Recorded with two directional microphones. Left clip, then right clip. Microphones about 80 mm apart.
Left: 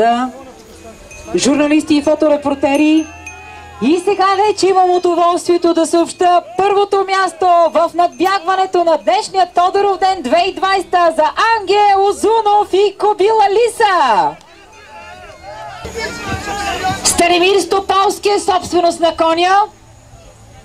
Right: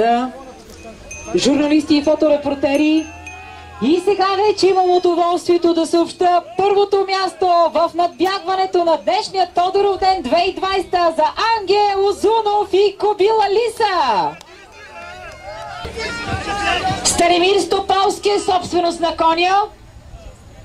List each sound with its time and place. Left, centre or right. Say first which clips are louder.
0.0 s a woman's voice: left 3 dB; left
1.3 s a woman's voice: left 2 dB; left
15.5 s a sound: left 2 dB; centre
16.8 s a woman's voice: left 5 dB; left